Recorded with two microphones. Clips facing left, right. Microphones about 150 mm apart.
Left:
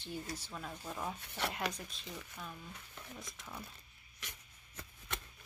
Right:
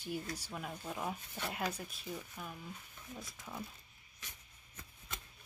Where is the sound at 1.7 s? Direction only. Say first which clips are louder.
Right 3 dB; 10° right (ahead or behind).